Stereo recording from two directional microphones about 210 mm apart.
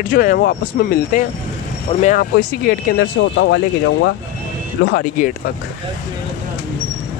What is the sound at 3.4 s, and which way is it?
Speech, 60° left (ahead or behind).